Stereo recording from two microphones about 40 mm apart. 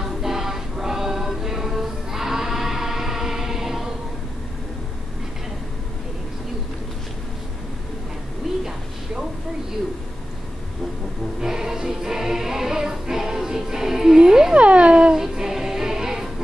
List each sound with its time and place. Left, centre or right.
0.0 s music: centre
8.5 s music: centre
11.4 s music: centre
14.5 s a sound: right
15.1 s music: centre